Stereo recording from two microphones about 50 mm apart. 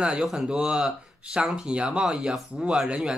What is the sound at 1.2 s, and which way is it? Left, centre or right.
Speech, right.